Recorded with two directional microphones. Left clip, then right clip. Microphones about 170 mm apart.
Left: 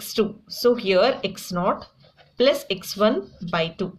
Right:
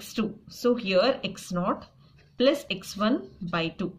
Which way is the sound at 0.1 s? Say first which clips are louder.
Left 9 dB; 35° left (ahead or behind).